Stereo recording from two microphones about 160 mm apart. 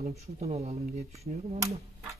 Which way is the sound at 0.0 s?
40° right (ahead or behind).